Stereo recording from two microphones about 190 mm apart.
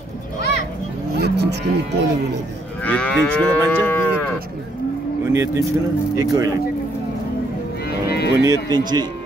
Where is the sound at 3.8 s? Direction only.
10° left (ahead or behind).